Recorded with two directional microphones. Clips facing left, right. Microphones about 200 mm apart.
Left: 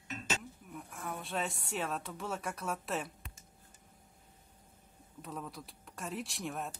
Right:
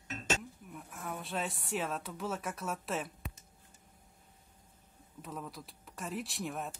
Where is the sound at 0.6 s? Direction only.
Centre (ahead or behind).